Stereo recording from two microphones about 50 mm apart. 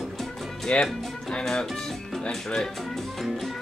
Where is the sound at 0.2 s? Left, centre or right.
Centre.